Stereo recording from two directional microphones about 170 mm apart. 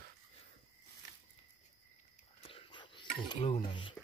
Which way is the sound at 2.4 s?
30° left (ahead or behind).